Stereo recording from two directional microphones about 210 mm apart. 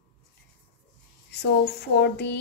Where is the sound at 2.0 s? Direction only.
55° left (ahead or behind).